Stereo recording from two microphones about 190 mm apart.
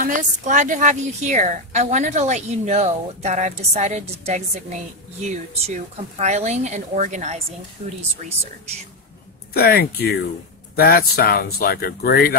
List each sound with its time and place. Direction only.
0.0 s a woman's voice: 40° right (ahead or behind)
9.5 s speech: 55° left (ahead or behind)